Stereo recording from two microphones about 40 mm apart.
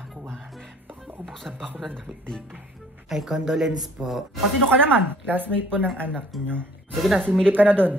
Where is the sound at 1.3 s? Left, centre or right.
Centre.